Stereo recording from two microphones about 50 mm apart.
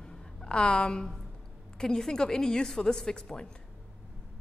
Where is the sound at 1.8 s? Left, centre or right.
Centre.